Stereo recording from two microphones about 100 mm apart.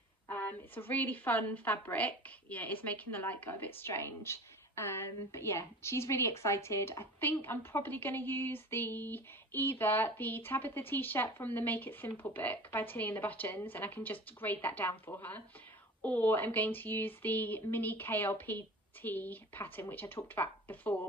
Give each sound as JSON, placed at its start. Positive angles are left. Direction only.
{"t": 0.3, "sound": "a woman's voice", "side_deg": 20}